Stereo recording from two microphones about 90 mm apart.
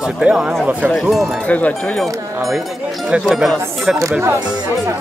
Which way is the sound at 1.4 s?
15° left (ahead or behind).